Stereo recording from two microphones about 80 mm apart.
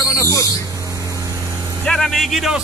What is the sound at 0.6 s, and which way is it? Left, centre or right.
Vehicle, right.